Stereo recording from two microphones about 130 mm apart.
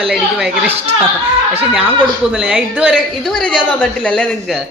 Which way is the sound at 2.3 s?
5° right (ahead or behind).